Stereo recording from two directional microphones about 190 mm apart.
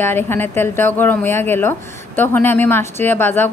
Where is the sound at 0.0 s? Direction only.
10° left (ahead or behind).